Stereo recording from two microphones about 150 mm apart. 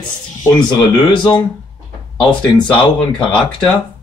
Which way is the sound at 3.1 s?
30° left (ahead or behind).